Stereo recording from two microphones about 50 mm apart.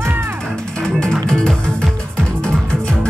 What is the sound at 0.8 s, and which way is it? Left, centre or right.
Music, centre.